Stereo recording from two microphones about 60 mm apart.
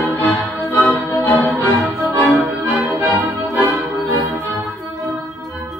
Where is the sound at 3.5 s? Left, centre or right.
Right.